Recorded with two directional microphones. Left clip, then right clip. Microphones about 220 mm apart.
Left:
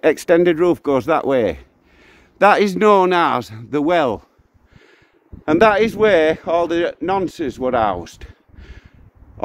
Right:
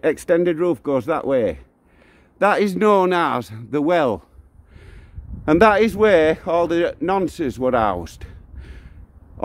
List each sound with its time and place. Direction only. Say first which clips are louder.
0.0 s a man's voice: left 4 dB; 25° left (ahead or behind); by 4.2 s 10° right (ahead or behind)
5.4 s speech: left 1 dB; 20° right (ahead or behind)